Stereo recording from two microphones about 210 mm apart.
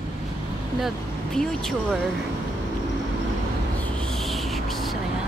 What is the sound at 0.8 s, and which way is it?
Speech, centre (ahead or behind).